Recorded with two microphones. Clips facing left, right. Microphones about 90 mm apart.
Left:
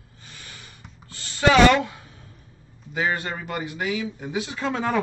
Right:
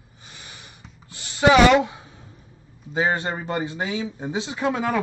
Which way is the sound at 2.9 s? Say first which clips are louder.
Right 3 dB; 25° right (ahead or behind).